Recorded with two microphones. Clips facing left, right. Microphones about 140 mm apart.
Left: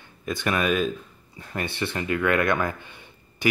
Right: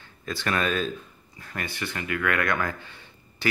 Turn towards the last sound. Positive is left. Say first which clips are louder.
# left 2 dB
turn(degrees=15)  # may be behind; listen again after turning